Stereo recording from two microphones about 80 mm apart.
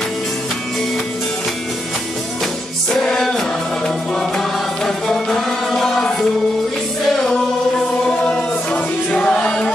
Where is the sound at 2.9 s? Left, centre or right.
Centre.